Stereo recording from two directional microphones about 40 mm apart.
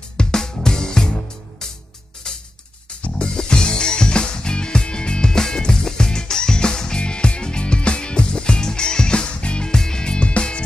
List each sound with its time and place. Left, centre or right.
0.2 s music: centre